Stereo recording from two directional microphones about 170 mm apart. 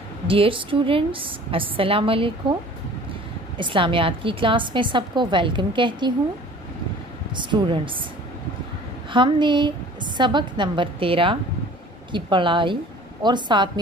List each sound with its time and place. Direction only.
0.3 s a woman's voice: 30° right (ahead or behind)
3.5 s a woman's voice: 30° right (ahead or behind)
7.3 s a woman's voice: 30° right (ahead or behind)
9.1 s a woman's voice: 30° right (ahead or behind)